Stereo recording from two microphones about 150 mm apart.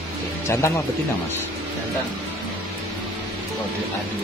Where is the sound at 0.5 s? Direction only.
15° left (ahead or behind).